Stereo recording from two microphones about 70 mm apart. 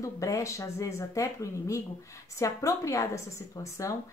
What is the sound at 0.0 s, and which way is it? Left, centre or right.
A woman's voice, left.